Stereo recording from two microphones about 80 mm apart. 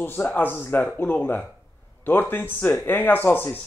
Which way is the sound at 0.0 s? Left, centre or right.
Left.